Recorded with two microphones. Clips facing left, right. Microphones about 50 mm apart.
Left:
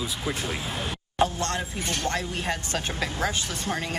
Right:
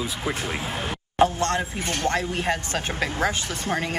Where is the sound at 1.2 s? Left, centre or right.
Right.